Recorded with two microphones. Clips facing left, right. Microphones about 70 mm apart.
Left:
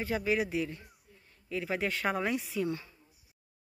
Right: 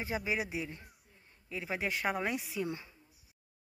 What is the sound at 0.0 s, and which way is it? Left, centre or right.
Speech, centre.